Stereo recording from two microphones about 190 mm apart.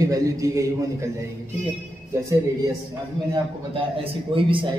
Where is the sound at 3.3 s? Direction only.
25° right (ahead or behind).